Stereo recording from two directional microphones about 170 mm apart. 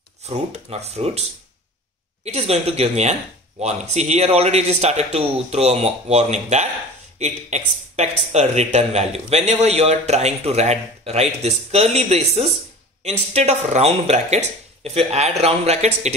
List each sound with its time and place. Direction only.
0.2 s speech: 40° right (ahead or behind)
2.2 s speech: 40° right (ahead or behind)